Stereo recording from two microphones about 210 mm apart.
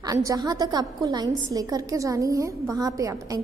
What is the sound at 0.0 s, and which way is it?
A woman's voice, 15° right (ahead or behind).